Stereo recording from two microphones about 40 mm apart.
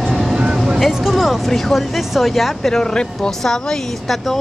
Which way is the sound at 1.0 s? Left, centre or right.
Centre.